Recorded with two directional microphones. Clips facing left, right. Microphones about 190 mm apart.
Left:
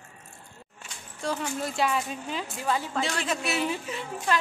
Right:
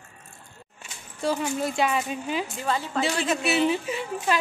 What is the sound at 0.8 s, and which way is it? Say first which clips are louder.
Speech: right 5 dB; 5° right (ahead or behind).